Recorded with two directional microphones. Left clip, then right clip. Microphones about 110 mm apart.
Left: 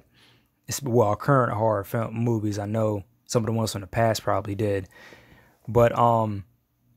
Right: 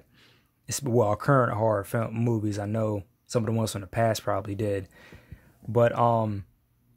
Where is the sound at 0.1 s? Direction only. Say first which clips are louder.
Left 1 dB; 15° left (ahead or behind).